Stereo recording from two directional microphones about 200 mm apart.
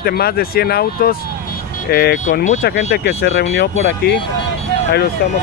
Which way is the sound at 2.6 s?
60° left (ahead or behind).